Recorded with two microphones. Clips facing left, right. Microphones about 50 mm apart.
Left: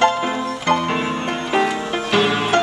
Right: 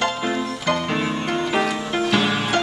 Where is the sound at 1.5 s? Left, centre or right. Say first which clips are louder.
Left 6 dB; centre.